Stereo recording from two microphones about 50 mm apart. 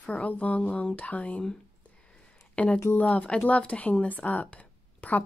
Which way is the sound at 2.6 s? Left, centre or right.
Left.